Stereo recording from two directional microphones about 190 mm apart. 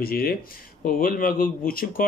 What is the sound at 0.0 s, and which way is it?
Speech, 50° left (ahead or behind).